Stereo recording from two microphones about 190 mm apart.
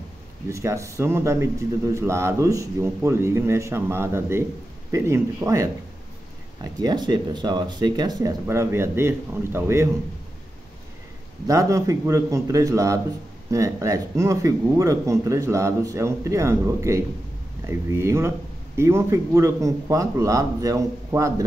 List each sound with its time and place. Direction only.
0.5 s speech: 15° right (ahead or behind)
11.4 s speech: 15° right (ahead or behind)